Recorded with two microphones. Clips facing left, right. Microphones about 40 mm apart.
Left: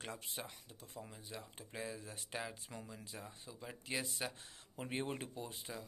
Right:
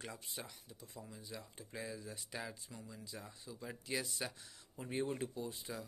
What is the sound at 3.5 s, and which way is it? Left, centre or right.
Speech, centre.